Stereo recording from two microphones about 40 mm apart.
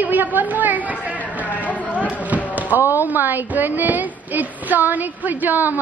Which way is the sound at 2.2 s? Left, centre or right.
Right.